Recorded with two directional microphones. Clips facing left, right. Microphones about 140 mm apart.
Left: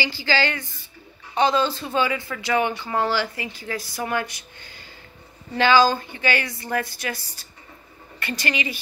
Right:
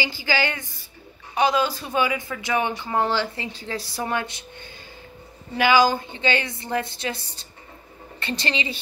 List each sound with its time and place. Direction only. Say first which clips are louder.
0.0 s a woman's voice: left 1 dB; 15° right (ahead or behind)